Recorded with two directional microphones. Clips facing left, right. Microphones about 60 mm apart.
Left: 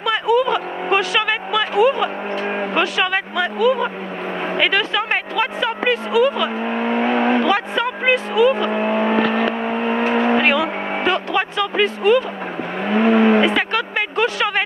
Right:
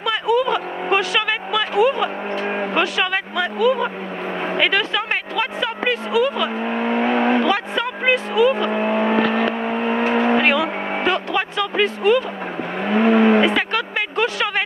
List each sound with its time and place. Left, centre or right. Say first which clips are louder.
0.0 s vehicle: left 2 dB; left
4.6 s speech: left 1 dB; left
6.6 s speech: even; left
7.4 s speech: left 2 dB; left
8.6 s speech: left 1 dB; left
12.8 s vehicle: even; left